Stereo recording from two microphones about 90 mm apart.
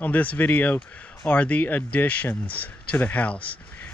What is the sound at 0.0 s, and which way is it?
Speech, 20° left (ahead or behind).